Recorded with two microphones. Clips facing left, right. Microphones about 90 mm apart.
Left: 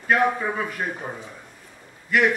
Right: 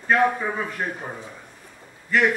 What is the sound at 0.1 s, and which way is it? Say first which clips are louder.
A man's voice: right 1 dB; centre (ahead or behind).